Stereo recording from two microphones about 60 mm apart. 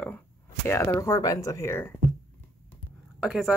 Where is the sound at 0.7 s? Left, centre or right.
Left.